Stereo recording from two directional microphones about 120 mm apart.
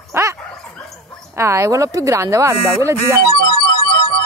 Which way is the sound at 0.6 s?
5° left (ahead or behind).